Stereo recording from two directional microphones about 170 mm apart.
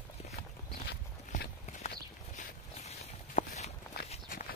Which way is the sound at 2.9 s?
40° left (ahead or behind).